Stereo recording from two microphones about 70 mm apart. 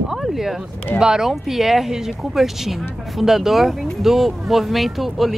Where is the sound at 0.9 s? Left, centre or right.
Centre.